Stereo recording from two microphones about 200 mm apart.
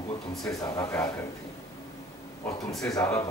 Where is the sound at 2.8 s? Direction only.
15° left (ahead or behind).